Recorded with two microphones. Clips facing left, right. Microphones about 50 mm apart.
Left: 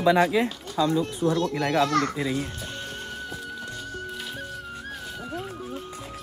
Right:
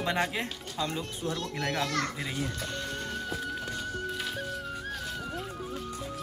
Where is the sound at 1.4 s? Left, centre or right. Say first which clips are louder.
Left 7 dB; left.